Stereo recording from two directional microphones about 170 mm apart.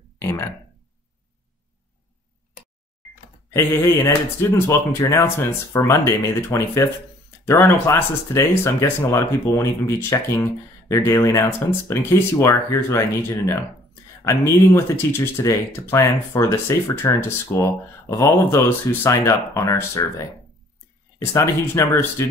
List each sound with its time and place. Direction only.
0.2 s a sound: 15° left (ahead or behind)
3.5 s speech: 15° left (ahead or behind)
21.2 s speech: 15° left (ahead or behind)